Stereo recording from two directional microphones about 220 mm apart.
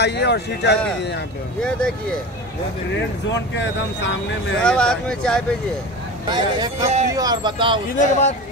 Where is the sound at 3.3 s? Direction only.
55° left (ahead or behind).